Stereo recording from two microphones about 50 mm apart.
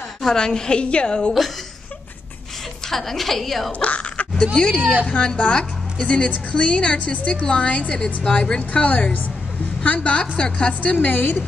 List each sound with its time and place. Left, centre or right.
0.2 s a woman's voice: centre
2.9 s a woman's voice: centre
3.8 s a sound: left
4.6 s a woman's voice: centre
9.9 s a woman's voice: left